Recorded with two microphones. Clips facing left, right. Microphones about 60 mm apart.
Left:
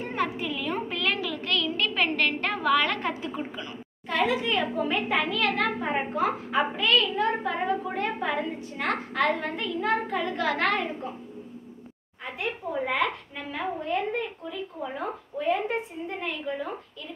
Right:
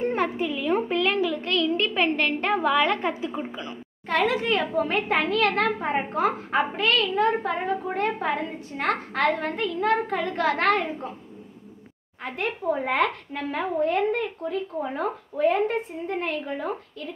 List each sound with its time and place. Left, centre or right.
0.1 s a child's voice: right
4.1 s a woman's voice: right
12.2 s a woman's voice: right